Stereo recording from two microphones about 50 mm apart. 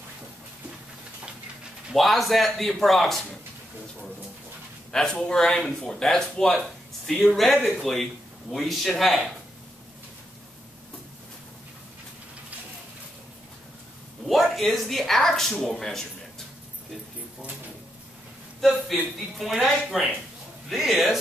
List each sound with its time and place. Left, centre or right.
2.0 s speech: centre
4.9 s speech: centre
7.2 s speech: centre
14.2 s speech: centre
18.6 s speech: centre